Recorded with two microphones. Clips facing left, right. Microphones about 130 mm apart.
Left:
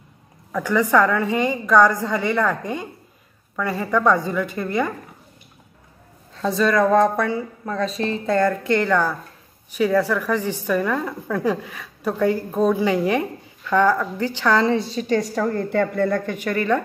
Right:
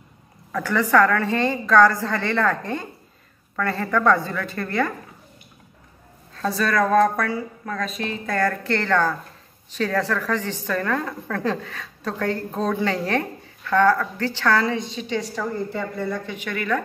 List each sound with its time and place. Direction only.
0.5 s a woman's voice: 15° left (ahead or behind)
6.3 s a woman's voice: 20° left (ahead or behind)
8.4 s a woman's voice: 20° left (ahead or behind)
14.7 s speech: 35° left (ahead or behind)
15.4 s speech: 60° left (ahead or behind); by 16.8 s 35° left (ahead or behind)